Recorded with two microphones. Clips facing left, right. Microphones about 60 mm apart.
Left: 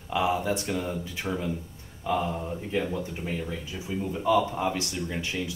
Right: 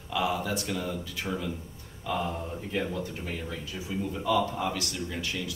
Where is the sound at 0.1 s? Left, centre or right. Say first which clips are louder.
Left 3 dB; left.